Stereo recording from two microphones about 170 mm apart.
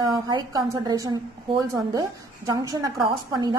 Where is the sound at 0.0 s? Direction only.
25° right (ahead or behind).